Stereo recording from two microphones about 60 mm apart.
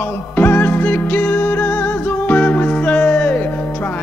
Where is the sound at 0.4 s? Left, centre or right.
Left.